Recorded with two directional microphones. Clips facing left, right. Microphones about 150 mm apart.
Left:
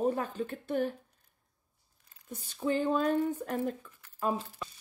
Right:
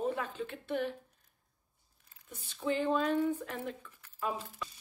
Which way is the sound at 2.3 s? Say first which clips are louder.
Left 3 dB; 40° left (ahead or behind).